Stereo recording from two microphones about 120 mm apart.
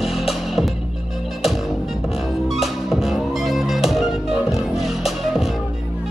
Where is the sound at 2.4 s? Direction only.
5° right (ahead or behind).